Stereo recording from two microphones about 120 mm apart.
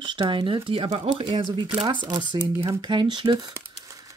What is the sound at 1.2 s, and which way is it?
Speech, 40° right (ahead or behind).